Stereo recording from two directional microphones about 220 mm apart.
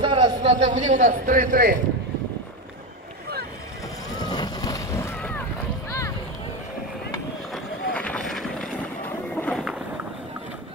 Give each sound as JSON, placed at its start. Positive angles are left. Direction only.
{"t": 0.0, "sound": "a man's voice", "side_deg": -25}
{"t": 4.2, "sound": "vehicle", "side_deg": 20}
{"t": 7.5, "sound": "vehicle", "side_deg": 5}